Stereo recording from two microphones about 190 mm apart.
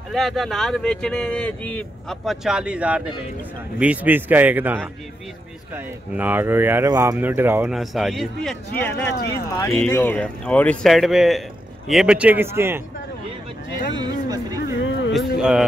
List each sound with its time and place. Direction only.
0.1 s speech: centre (ahead or behind)
13.9 s speech: 20° right (ahead or behind)
14.8 s a sound: 75° left (ahead or behind)
15.1 s speech: 5° right (ahead or behind)